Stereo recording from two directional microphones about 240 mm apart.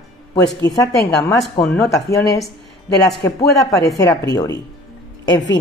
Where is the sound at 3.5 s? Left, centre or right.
Centre.